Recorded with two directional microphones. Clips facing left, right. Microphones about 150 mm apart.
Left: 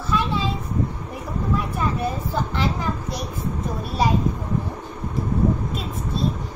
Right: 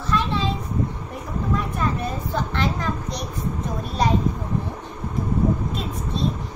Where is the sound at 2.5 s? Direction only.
5° left (ahead or behind).